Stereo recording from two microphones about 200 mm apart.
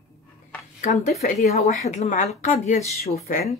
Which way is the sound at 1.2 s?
35° left (ahead or behind).